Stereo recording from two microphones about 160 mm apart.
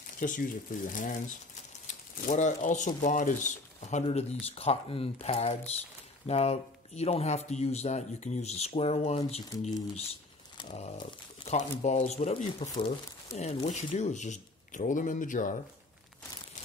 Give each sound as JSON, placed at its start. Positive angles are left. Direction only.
{"t": 0.2, "sound": "speech", "side_deg": 60}
{"t": 10.7, "sound": "speech", "side_deg": 40}
{"t": 11.0, "sound": "speech", "side_deg": 30}
{"t": 11.8, "sound": "speech", "side_deg": 45}